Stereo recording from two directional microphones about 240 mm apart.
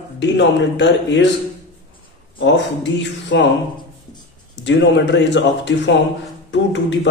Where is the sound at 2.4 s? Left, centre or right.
Left.